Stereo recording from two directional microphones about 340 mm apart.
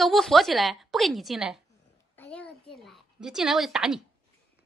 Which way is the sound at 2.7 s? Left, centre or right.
Centre.